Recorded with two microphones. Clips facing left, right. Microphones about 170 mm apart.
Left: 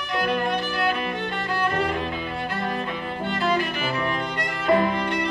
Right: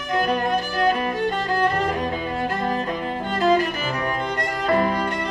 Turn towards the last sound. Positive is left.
turn(degrees=-40)  # may be behind; listen again after turning